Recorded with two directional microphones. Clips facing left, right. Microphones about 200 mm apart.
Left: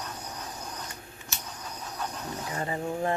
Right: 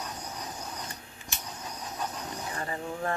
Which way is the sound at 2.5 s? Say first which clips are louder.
Left 5 dB; 20° left (ahead or behind).